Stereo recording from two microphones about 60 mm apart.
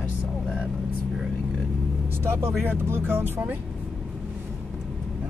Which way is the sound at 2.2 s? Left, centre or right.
Right.